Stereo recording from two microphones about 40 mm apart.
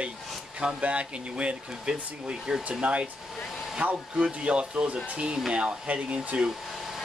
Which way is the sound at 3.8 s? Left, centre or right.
Right.